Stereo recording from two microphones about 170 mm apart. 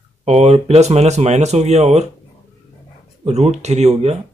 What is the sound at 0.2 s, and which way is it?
Speech, 40° right (ahead or behind).